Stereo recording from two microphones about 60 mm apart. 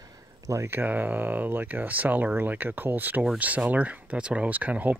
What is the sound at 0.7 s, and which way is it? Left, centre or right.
Speech, right.